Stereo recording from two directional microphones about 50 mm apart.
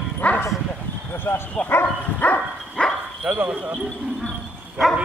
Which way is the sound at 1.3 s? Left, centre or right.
Left.